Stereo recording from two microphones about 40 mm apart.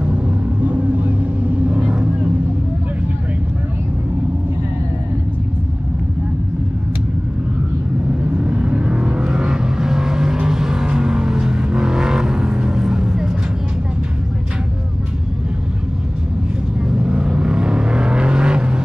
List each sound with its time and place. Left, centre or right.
0.7 s vehicle: right
8.1 s vehicle: right
16.9 s vehicle: right